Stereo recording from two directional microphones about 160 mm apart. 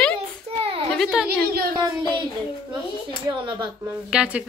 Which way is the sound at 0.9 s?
Centre (ahead or behind).